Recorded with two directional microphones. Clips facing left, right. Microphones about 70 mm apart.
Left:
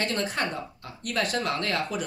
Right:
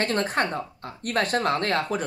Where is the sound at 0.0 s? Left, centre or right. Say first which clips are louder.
Right 4 dB; right.